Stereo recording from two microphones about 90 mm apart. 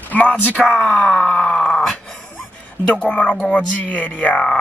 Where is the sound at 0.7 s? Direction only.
Centre (ahead or behind).